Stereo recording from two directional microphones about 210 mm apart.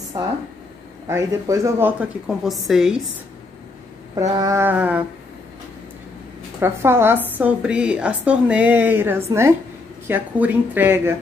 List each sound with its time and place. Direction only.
0.2 s a woman's voice: 15° right (ahead or behind)
4.1 s a woman's voice: 20° right (ahead or behind)
6.6 s a woman's voice: 10° right (ahead or behind)